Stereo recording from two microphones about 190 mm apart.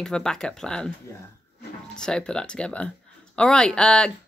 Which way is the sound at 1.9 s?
5° left (ahead or behind).